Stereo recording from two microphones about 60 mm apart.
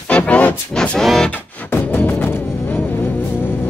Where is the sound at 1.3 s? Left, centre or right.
Left.